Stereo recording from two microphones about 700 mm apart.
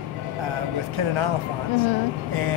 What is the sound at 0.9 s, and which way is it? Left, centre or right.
Speech, right.